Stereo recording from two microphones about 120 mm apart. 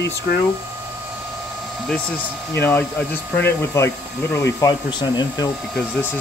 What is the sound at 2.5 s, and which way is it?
Speech, 20° left (ahead or behind).